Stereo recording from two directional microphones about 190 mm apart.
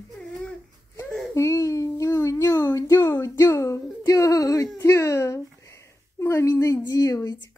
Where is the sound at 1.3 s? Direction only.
15° left (ahead or behind).